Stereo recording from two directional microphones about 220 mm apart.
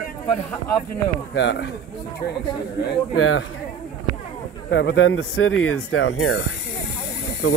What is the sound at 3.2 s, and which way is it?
Speech, 70° left (ahead or behind).